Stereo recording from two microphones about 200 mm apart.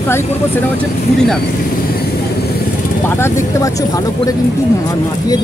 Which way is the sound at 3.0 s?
10° left (ahead or behind).